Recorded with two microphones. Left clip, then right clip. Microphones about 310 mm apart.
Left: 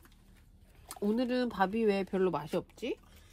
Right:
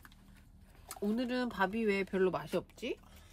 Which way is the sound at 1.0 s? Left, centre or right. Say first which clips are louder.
Left 4 dB; centre.